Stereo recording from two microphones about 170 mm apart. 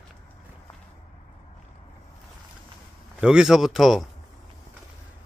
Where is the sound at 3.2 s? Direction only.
5° right (ahead or behind).